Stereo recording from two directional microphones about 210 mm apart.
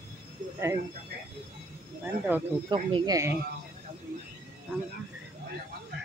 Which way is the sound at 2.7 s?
20° right (ahead or behind).